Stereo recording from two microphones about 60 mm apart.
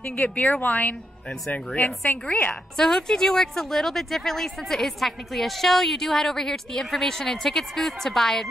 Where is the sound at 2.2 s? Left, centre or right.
Left.